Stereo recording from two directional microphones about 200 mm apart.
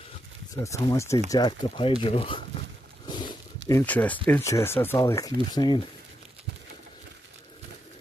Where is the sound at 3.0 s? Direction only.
20° left (ahead or behind).